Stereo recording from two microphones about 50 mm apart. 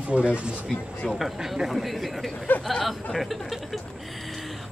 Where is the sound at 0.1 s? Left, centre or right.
Right.